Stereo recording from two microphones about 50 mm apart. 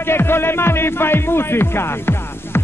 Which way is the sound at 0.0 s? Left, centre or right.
Left.